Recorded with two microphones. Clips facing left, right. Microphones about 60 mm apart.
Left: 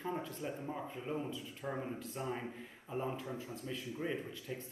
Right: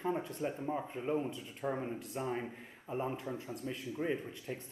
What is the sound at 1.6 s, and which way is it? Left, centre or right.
Speech, centre.